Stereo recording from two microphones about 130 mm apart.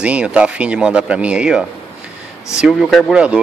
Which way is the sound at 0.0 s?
10° right (ahead or behind).